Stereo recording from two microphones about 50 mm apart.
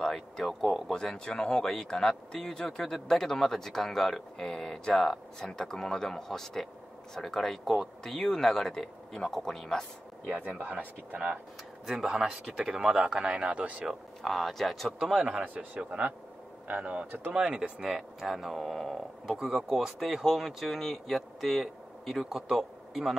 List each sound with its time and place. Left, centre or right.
0.0 s speech: centre
10.3 s speech: right
12.1 s a man's voice: centre
14.2 s speech: centre
15.2 s a man's voice: right
17.7 s speech: centre